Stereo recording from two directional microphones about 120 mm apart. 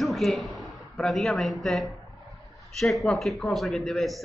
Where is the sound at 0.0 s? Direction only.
Centre (ahead or behind).